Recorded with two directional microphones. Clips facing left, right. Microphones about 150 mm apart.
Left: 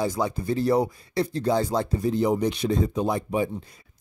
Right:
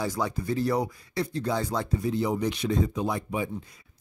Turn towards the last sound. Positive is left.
turn(degrees=35)  # may be behind; listen again after turning